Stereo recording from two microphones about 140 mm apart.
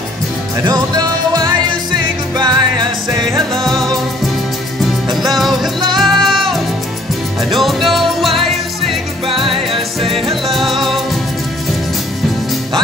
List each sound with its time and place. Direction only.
0.6 s music: 30° right (ahead or behind)
3.5 s music: centre (ahead or behind)
7.5 s music: centre (ahead or behind)
9.3 s music: 40° right (ahead or behind)
10.5 s music: centre (ahead or behind)